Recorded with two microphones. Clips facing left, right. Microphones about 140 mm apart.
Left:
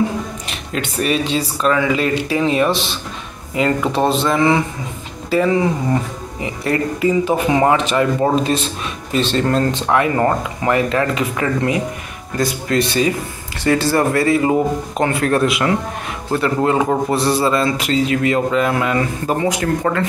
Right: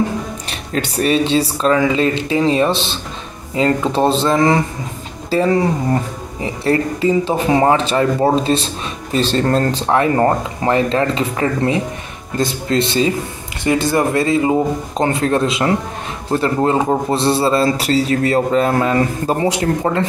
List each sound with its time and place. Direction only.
0.5 s a man's voice: 35° right (ahead or behind)